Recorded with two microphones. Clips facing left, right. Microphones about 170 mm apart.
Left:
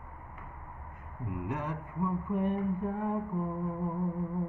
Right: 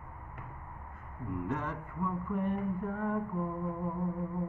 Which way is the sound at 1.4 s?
15° left (ahead or behind).